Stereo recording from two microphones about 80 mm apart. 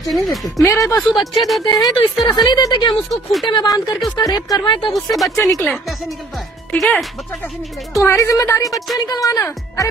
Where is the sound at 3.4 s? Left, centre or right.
Left.